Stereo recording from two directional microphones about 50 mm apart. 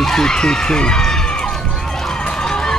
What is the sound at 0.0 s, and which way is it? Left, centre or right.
Speech, centre.